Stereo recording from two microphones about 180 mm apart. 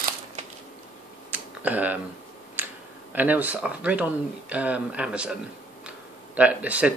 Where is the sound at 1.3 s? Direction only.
10° right (ahead or behind).